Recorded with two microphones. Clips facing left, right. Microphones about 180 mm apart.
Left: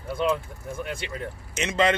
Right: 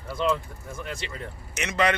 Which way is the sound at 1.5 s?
25° left (ahead or behind).